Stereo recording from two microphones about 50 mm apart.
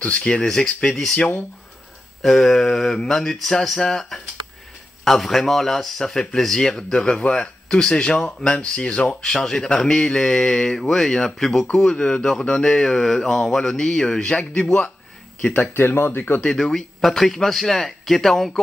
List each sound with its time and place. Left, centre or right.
0.3 s speech: centre
0.8 s speech: centre; by 14.4 s left
15.7 s speech: left
16.4 s speech: centre